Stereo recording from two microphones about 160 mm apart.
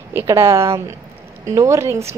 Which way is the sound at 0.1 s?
15° right (ahead or behind).